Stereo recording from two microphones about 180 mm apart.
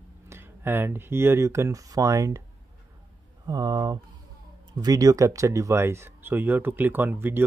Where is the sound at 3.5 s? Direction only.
20° right (ahead or behind).